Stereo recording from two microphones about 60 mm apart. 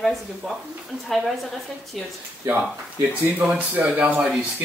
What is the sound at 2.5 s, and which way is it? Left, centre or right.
Speech, right.